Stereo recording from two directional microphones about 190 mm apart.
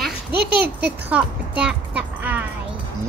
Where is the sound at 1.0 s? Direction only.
5° right (ahead or behind).